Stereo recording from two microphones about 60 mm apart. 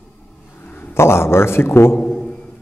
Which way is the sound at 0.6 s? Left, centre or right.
Left.